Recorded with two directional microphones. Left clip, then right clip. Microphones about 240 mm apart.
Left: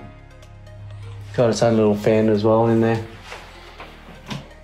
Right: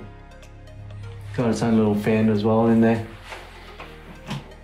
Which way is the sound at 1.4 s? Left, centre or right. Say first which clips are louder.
Left 6 dB; left.